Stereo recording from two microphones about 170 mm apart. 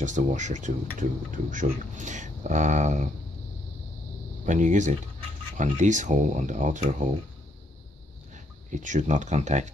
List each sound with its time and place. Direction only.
0.0 s speech: 45° right (ahead or behind)
4.5 s speech: 45° right (ahead or behind)
8.6 s speech: 45° right (ahead or behind)